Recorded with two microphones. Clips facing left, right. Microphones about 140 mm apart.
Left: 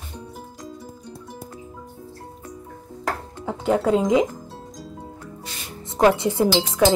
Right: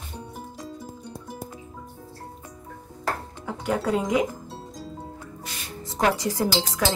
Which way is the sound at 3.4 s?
25° left (ahead or behind).